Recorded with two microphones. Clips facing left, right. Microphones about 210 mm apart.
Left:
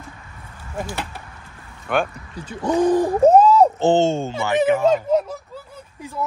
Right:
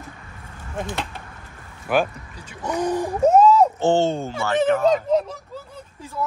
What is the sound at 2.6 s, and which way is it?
Speech, 25° left (ahead or behind).